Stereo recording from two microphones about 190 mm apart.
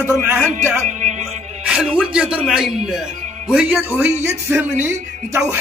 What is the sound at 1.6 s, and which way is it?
A man's voice, 5° right (ahead or behind).